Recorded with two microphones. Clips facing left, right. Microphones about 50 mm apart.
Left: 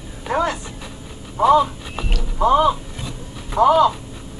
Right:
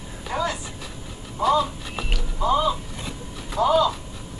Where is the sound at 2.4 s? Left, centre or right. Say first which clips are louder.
Left 6 dB; left.